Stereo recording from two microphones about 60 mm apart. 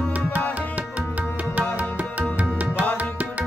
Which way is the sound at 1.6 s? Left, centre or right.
Right.